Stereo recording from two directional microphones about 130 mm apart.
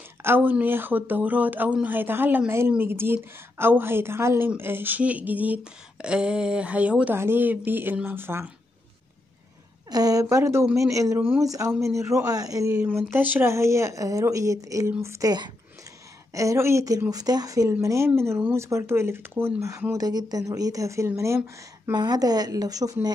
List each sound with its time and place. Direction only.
0.2 s speech: 15° right (ahead or behind)
9.8 s a woman's voice: 30° right (ahead or behind)
12.7 s speech: 15° right (ahead or behind)
21.9 s speech: 35° right (ahead or behind)